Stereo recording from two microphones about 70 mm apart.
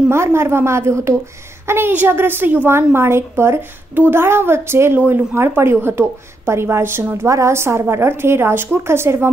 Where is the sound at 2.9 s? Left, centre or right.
Right.